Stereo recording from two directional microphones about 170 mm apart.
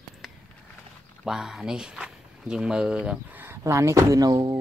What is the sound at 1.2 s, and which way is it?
Speech, 5° right (ahead or behind).